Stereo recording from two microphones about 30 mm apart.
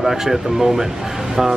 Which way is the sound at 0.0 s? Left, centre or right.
Centre.